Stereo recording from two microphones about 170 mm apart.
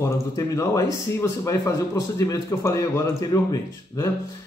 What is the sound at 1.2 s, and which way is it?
A man's voice, 20° left (ahead or behind).